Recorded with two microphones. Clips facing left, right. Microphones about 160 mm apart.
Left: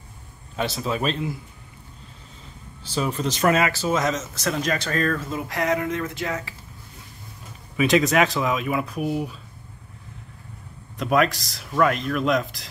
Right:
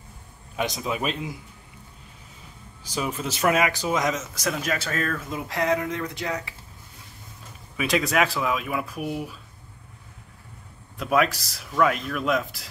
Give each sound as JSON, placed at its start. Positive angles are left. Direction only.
{"t": 0.6, "sound": "speech", "side_deg": -15}
{"t": 2.8, "sound": "speech", "side_deg": -10}
{"t": 6.0, "sound": "speech", "side_deg": -20}
{"t": 7.7, "sound": "speech", "side_deg": 0}
{"t": 11.0, "sound": "speech", "side_deg": 0}